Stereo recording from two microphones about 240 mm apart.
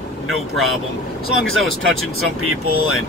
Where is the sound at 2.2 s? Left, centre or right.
Right.